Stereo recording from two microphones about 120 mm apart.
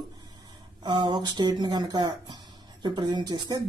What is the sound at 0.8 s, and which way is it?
Speech, 35° right (ahead or behind).